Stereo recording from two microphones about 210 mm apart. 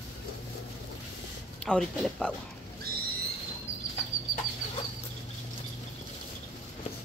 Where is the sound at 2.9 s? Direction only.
45° right (ahead or behind).